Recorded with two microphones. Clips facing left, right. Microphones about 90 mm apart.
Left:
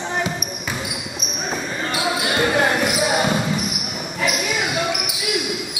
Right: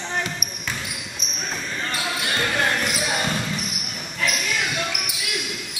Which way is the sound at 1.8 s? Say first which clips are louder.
Left 5 dB; 10° left (ahead or behind).